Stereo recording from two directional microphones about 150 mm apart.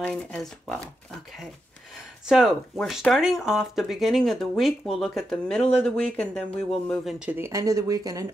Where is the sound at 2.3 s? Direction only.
Centre (ahead or behind).